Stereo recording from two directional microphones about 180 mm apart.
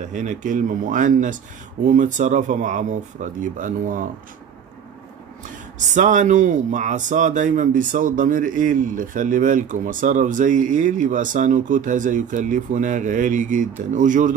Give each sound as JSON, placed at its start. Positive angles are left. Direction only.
{"t": 0.0, "sound": "speech", "side_deg": -45}
{"t": 5.9, "sound": "speech", "side_deg": -45}